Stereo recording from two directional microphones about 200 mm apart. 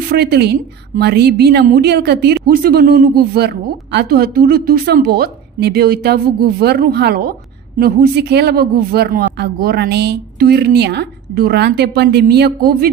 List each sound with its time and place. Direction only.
0.1 s a woman's voice: 55° right (ahead or behind)